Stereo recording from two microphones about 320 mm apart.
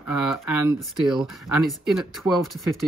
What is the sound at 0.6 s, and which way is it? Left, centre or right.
Speech, centre.